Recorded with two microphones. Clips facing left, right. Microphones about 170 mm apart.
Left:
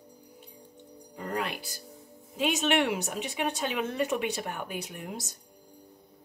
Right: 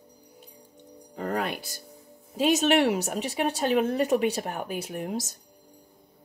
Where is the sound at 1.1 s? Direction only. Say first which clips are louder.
Right 4 dB; 50° right (ahead or behind).